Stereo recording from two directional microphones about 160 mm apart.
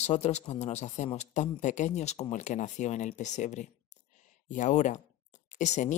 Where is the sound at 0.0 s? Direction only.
45° left (ahead or behind).